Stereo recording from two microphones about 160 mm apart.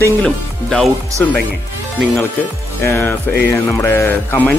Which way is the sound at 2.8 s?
15° left (ahead or behind).